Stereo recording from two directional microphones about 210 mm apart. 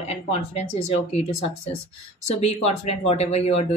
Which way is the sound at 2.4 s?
30° left (ahead or behind).